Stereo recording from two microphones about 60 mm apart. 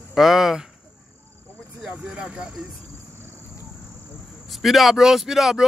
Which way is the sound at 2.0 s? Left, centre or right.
Centre.